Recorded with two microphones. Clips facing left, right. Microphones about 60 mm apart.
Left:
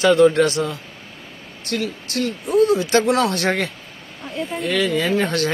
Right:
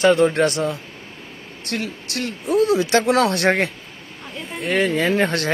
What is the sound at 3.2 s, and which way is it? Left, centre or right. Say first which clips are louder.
Speech: right 2 dB; right.